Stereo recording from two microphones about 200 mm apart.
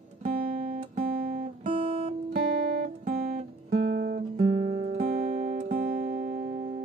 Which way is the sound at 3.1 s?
45° right (ahead or behind).